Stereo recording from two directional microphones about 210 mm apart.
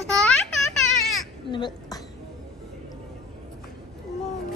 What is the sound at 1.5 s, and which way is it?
Speech, 20° left (ahead or behind).